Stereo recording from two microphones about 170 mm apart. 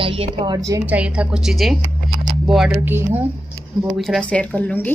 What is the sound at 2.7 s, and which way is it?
Speech, 15° right (ahead or behind).